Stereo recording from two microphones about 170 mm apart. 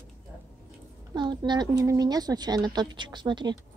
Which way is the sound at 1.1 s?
25° right (ahead or behind).